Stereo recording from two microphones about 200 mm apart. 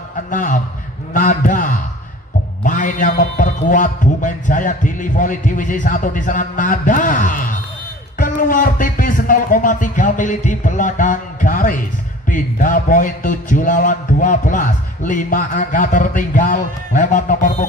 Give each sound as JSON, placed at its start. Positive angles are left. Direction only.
{"t": 0.3, "sound": "a man's voice", "side_deg": 40}
{"t": 1.1, "sound": "a sound", "side_deg": 40}
{"t": 2.6, "sound": "a man's voice", "side_deg": 40}